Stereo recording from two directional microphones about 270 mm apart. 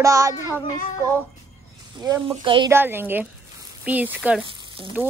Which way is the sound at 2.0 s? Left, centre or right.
Centre.